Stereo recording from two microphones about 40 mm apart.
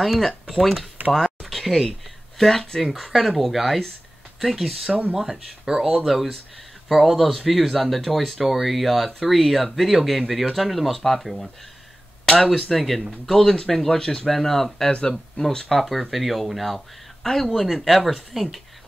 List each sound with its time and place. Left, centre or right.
0.0 s speech: centre
1.1 s a sound: centre
2.8 s speech: centre
14.9 s speech: centre